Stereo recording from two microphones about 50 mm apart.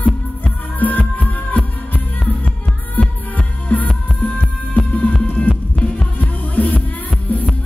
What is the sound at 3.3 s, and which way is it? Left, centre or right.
Music, left.